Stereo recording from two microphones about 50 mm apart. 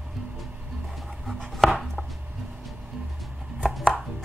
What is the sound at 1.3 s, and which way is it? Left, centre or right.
Chopping, centre.